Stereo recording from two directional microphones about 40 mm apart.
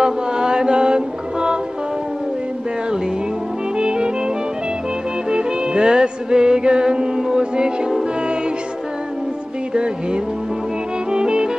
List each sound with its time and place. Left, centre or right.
0.0 s mantra: right
3.7 s music: right
5.3 s music: right
11.1 s music: right